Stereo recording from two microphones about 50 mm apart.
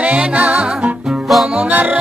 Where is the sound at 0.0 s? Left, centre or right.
Right.